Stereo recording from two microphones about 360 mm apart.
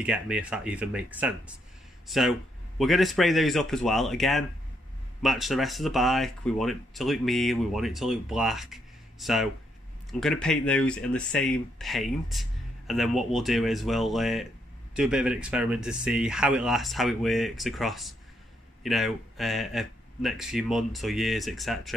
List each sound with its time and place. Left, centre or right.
0.0 s speech: centre